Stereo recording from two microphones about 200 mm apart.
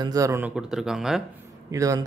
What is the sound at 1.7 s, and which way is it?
Speech, 15° right (ahead or behind).